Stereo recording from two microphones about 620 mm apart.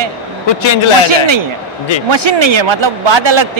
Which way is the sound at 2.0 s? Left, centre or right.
Right.